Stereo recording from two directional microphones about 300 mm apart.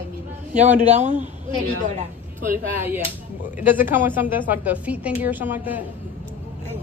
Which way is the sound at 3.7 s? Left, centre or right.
Centre.